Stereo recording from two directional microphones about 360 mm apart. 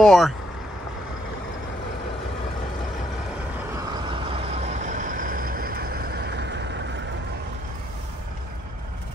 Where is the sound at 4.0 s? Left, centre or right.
Centre.